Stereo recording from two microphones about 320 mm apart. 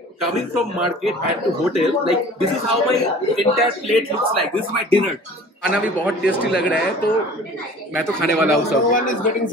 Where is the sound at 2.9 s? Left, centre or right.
Centre.